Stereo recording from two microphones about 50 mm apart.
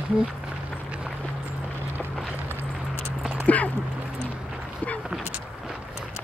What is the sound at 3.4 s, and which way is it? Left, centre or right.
Speech, left.